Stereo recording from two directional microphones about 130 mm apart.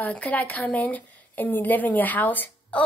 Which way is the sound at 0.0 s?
10° left (ahead or behind).